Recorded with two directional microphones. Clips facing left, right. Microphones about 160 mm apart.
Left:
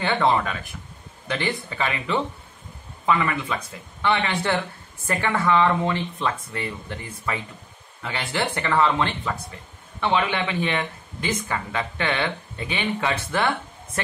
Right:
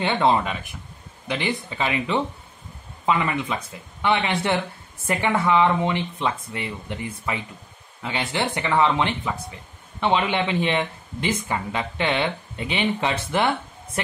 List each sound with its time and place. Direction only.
0.0 s speech: 20° right (ahead or behind)